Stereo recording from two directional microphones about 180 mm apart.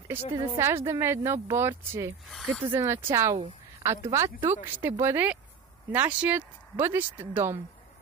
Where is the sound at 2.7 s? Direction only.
15° right (ahead or behind).